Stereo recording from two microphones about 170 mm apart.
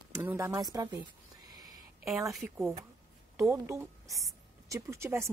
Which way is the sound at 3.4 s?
15° right (ahead or behind).